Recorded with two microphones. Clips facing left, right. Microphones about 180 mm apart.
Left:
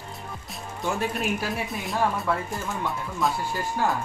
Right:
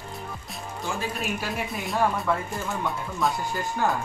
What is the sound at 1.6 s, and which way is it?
A woman's voice, centre (ahead or behind).